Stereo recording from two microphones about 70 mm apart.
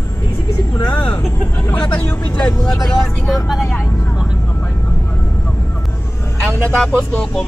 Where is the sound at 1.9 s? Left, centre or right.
Centre.